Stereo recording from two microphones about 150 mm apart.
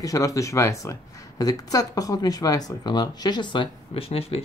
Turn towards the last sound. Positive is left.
turn(degrees=40)  # may be behind; listen again after turning